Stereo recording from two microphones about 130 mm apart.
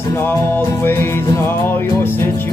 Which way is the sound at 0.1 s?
15° left (ahead or behind).